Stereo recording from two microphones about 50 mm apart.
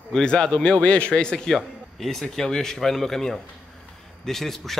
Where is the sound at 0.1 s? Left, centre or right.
Centre.